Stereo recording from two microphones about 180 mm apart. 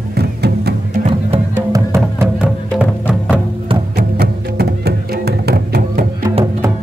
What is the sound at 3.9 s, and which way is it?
Music, 60° right (ahead or behind).